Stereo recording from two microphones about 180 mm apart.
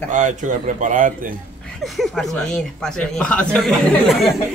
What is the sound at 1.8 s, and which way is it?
Speech, centre (ahead or behind).